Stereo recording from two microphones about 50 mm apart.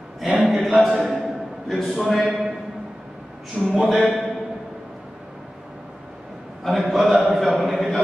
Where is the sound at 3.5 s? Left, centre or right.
Centre.